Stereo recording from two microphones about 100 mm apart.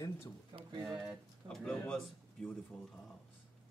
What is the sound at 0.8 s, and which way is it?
Speech, 5° right (ahead or behind).